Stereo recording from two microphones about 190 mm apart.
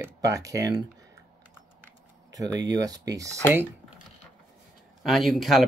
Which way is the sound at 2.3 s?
20° right (ahead or behind).